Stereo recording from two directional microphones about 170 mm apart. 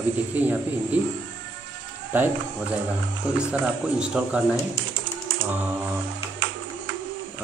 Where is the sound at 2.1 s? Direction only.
10° right (ahead or behind).